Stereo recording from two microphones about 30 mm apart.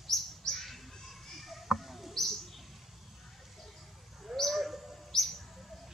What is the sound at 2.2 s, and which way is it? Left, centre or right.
Bird, centre.